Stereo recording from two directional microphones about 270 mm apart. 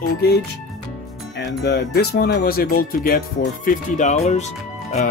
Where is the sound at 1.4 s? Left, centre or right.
Left.